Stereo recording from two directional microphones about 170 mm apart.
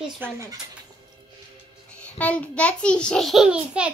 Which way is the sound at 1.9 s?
10° left (ahead or behind).